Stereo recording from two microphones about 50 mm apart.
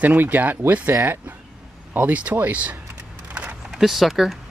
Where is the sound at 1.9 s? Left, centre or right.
Right.